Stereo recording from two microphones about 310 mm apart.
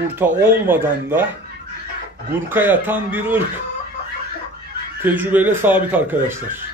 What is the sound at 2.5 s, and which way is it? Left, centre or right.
Speech, centre.